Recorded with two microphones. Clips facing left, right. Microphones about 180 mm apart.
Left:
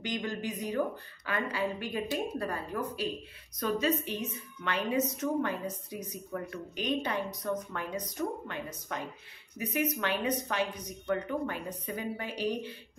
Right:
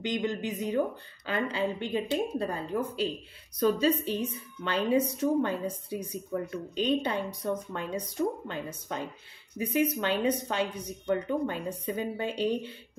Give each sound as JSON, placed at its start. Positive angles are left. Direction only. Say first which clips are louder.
{"t": 0.0, "sound": "a woman's voice", "louder": "right 4 dB", "side_deg": -20}